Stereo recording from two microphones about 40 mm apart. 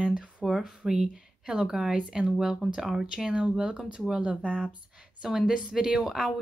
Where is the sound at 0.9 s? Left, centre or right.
Right.